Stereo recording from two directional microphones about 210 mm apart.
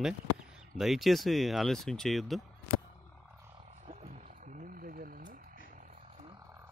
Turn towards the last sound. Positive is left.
turn(degrees=-45)  # may be behind; listen again after turning